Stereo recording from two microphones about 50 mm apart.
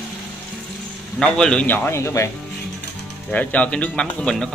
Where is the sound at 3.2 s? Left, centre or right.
Left.